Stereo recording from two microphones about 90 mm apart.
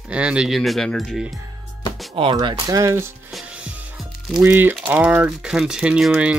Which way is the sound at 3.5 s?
10° right (ahead or behind).